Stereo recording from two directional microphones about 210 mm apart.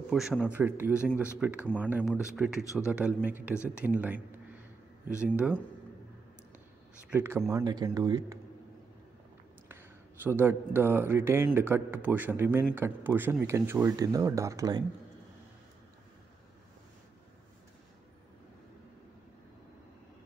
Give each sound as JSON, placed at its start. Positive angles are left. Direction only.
{"t": 0.1, "sound": "speech", "side_deg": 0}
{"t": 5.3, "sound": "speech", "side_deg": -5}
{"t": 7.1, "sound": "speech", "side_deg": -10}
{"t": 9.7, "sound": "speech", "side_deg": -10}